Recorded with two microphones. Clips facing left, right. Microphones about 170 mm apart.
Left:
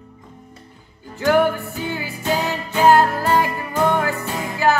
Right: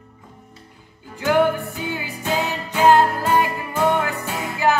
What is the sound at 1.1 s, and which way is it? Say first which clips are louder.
Music: left 1 dB; 15° right (ahead or behind).